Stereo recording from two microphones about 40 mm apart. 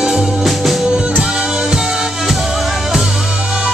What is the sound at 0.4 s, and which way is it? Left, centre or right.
Music, centre.